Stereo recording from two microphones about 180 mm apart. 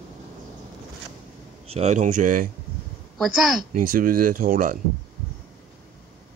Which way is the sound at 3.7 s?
50° right (ahead or behind).